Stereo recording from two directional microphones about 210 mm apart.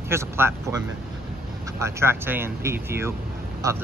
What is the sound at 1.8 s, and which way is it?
Speech, 10° right (ahead or behind).